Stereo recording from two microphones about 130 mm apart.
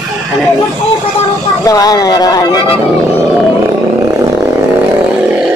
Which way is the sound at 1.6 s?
30° left (ahead or behind).